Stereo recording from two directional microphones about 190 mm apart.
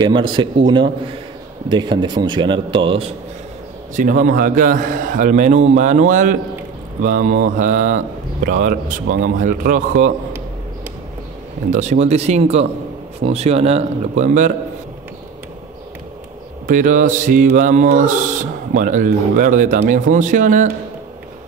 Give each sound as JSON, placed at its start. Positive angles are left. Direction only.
{"t": 0.0, "sound": "a man's voice", "side_deg": -25}
{"t": 3.9, "sound": "speech", "side_deg": -45}
{"t": 11.7, "sound": "speech", "side_deg": -40}
{"t": 16.6, "sound": "speech", "side_deg": -45}